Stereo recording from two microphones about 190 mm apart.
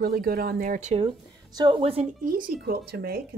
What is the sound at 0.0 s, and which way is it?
Speech, 50° right (ahead or behind).